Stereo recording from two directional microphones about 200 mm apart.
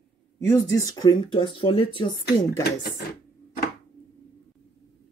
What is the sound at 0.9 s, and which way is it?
Speech, 20° left (ahead or behind).